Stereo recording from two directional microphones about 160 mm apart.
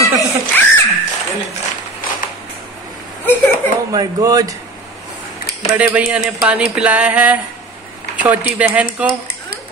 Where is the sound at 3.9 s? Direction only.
20° right (ahead or behind).